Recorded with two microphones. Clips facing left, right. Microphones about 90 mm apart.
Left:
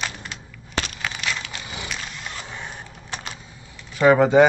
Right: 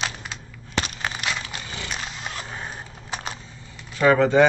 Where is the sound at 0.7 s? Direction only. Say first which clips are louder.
Right 1 dB; 30° right (ahead or behind).